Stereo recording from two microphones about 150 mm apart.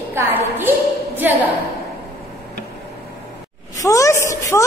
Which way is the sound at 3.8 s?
20° left (ahead or behind).